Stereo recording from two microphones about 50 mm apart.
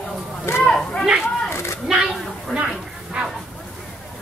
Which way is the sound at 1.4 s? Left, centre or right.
Left.